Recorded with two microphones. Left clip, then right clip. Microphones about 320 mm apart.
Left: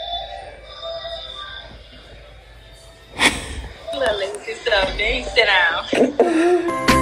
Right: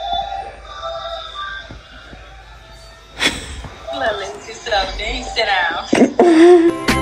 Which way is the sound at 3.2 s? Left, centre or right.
Centre.